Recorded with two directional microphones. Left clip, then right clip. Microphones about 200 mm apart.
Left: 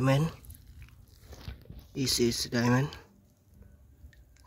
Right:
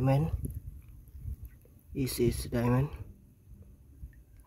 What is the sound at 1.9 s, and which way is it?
Speech, 5° right (ahead or behind).